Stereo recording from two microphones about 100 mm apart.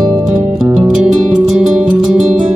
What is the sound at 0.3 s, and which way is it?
Music, 5° right (ahead or behind).